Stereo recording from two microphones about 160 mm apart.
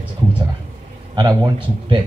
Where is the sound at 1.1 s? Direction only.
30° right (ahead or behind).